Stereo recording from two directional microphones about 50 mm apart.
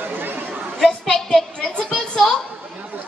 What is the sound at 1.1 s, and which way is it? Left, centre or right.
A woman's voice, centre.